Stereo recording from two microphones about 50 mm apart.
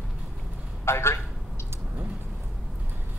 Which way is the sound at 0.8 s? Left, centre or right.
Left.